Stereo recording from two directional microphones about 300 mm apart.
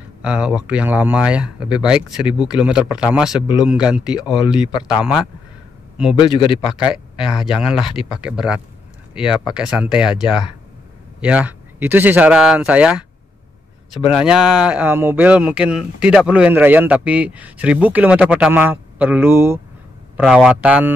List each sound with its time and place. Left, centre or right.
0.2 s speech: centre
4.2 s a man's voice: centre
4.8 s speech: centre
6.1 s a man's voice: centre
6.7 s speech: centre
7.8 s a man's voice: centre
8.2 s speech: centre
14.1 s speech: centre